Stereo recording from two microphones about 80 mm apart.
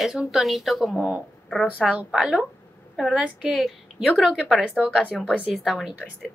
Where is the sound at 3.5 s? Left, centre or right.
Centre.